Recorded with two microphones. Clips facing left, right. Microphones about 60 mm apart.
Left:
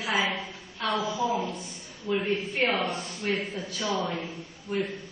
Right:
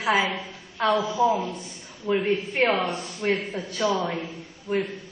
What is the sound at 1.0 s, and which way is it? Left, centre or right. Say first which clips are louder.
Speech: right 4 dB; right.